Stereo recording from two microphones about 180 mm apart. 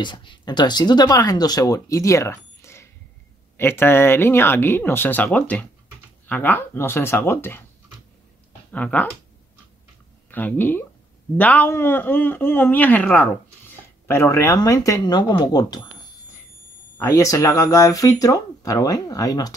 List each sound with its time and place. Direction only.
0.0 s a man's voice: 25° left (ahead or behind)
8.7 s a man's voice: 10° left (ahead or behind)
10.3 s a man's voice: 10° left (ahead or behind)
16.9 s speech: 15° left (ahead or behind)